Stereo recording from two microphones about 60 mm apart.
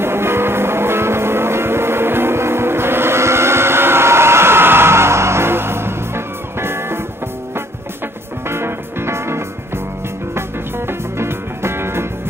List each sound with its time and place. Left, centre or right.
0.0 s music: right
8.5 s music: right
10.9 s music: right